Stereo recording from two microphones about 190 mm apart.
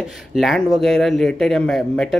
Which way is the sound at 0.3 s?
Centre (ahead or behind).